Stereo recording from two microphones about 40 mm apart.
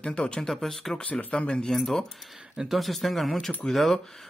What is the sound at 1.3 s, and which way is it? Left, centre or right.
Speech, left.